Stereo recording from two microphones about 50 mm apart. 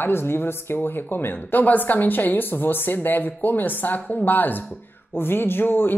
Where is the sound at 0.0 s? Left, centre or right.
Left.